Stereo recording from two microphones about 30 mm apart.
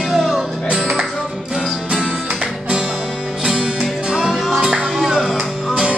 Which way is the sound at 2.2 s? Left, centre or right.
Right.